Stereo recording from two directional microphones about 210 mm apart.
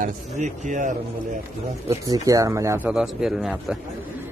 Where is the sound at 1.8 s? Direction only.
15° right (ahead or behind).